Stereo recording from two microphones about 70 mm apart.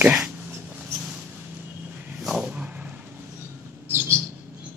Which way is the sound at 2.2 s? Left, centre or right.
Centre.